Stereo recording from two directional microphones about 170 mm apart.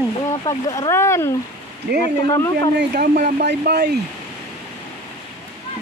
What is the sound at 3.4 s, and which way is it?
Speech, 70° right (ahead or behind).